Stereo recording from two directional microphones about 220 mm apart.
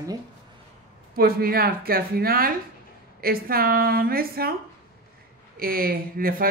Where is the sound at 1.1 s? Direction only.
45° right (ahead or behind).